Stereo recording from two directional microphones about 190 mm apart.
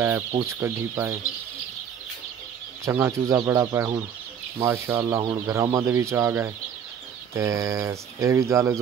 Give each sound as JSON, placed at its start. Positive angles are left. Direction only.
{"t": 0.5, "sound": "speech", "side_deg": -15}
{"t": 2.8, "sound": "speech", "side_deg": -15}